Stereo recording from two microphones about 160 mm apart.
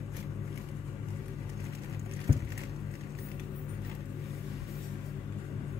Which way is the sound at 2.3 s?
35° right (ahead or behind).